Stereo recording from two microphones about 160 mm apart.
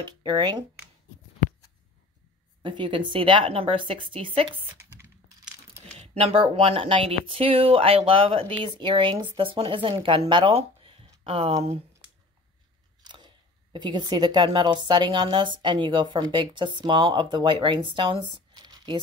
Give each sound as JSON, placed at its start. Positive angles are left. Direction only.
{"t": 0.0, "sound": "a woman's voice", "side_deg": -25}
{"t": 2.6, "sound": "speech", "side_deg": -30}
{"t": 5.9, "sound": "speech", "side_deg": -40}
{"t": 13.0, "sound": "chewing", "side_deg": -30}
{"t": 13.7, "sound": "a woman's voice", "side_deg": -25}
{"t": 18.5, "sound": "a sound", "side_deg": -25}